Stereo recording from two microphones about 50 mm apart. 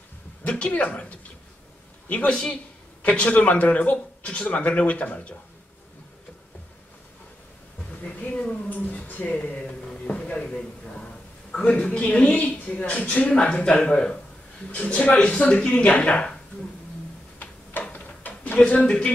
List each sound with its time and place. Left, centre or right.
0.4 s speech: left
8.6 s music: left; by 14.2 s centre
14.7 s speech: left
17.9 s a sound: left
18.7 s speech: left